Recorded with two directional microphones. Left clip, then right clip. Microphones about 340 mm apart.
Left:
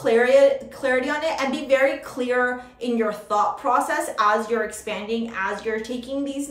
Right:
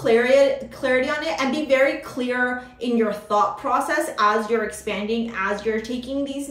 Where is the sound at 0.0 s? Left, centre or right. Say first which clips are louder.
Even; centre.